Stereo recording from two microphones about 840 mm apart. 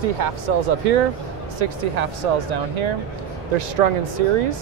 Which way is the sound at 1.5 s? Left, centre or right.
Right.